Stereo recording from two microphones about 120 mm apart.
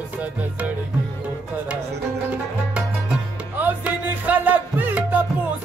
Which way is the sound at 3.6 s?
15° right (ahead or behind).